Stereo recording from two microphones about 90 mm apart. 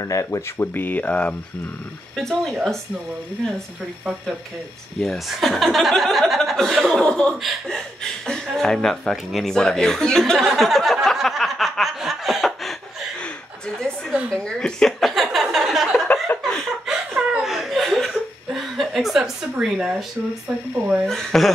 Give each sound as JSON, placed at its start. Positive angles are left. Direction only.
{"t": 0.0, "sound": "speech", "side_deg": 35}
{"t": 0.7, "sound": "speech", "side_deg": 20}
{"t": 2.1, "sound": "speech", "side_deg": 0}
{"t": 4.0, "sound": "speech", "side_deg": -15}
{"t": 5.0, "sound": "speech", "side_deg": 0}
{"t": 14.3, "sound": "a sound", "side_deg": 10}
{"t": 16.3, "sound": "a sound", "side_deg": 20}
{"t": 17.3, "sound": "chuckle", "side_deg": -5}
{"t": 19.5, "sound": "speech", "side_deg": -10}
{"t": 21.1, "sound": "speech", "side_deg": 5}